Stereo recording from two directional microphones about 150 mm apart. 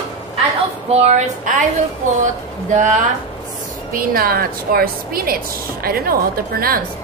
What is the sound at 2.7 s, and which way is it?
Speech, 55° right (ahead or behind).